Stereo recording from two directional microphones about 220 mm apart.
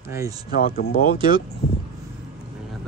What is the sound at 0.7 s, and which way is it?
Speech, 40° left (ahead or behind).